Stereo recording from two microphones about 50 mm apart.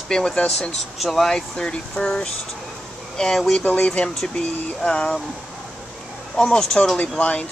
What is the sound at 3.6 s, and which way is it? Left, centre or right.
Speech, left.